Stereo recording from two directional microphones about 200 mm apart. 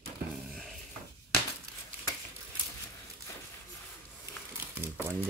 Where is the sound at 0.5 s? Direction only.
Centre (ahead or behind).